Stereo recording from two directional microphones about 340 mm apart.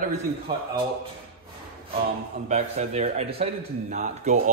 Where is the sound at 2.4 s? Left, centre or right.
Centre.